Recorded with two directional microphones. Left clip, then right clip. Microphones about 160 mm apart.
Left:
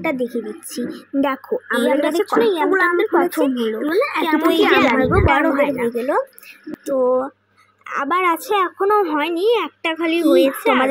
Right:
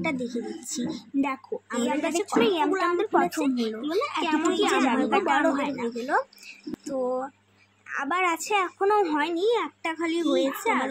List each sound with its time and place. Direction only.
0.7 s a woman's voice: 20° left (ahead or behind)
4.9 s a woman's voice: 15° left (ahead or behind)